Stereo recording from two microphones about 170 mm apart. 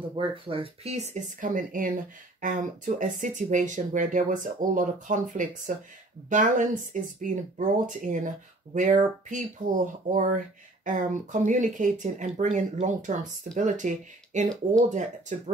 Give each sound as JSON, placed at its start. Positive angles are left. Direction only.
{"t": 0.1, "sound": "speech", "side_deg": -30}
{"t": 1.4, "sound": "speech", "side_deg": -50}